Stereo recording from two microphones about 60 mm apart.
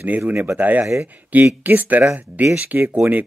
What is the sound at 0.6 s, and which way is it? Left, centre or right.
Speech, right.